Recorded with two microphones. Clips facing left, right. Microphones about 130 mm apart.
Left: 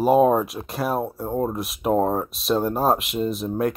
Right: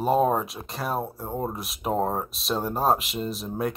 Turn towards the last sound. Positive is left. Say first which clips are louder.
# left 5 dB
turn(degrees=0)  # may be behind; listen again after turning